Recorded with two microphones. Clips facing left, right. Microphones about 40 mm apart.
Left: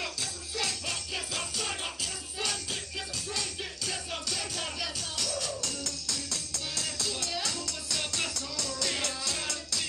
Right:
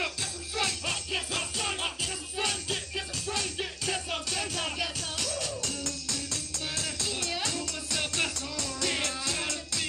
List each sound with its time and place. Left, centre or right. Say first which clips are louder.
0.0 s music: right 3 dB; right